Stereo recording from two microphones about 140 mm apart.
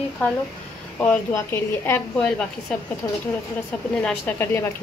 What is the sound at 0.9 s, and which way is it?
Speech, 10° left (ahead or behind).